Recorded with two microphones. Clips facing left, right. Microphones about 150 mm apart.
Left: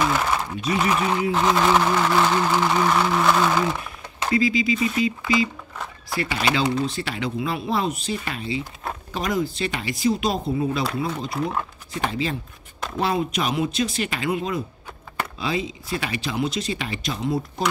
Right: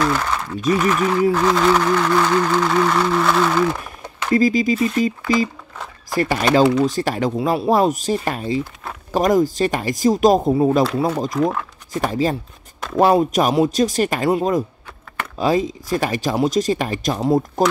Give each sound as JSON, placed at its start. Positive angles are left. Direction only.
{"t": 0.0, "sound": "a sound", "side_deg": 10}
{"t": 1.3, "sound": "speech", "side_deg": 20}
{"t": 4.3, "sound": "speech", "side_deg": -45}
{"t": 6.1, "sound": "speech", "side_deg": -45}